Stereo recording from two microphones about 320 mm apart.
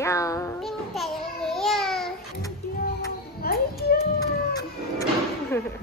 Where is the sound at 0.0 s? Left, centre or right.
Centre.